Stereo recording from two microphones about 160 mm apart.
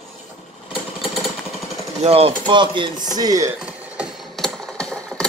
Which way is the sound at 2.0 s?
40° right (ahead or behind).